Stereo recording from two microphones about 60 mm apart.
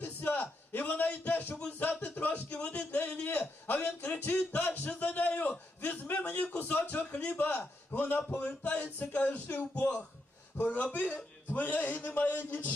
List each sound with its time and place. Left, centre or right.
0.0 s a sound: left
1.8 s a man's voice: left
7.5 s a man's voice: left